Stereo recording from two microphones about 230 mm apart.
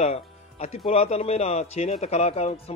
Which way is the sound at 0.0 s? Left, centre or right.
Left.